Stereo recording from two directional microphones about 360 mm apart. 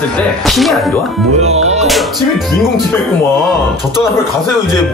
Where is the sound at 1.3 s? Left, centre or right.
Centre.